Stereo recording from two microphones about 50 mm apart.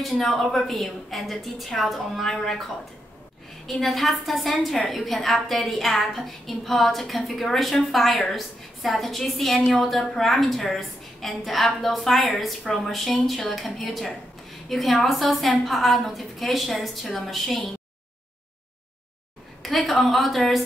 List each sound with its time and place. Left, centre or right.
0.0 s a woman's voice: centre
3.6 s a woman's voice: centre
19.6 s a woman's voice: centre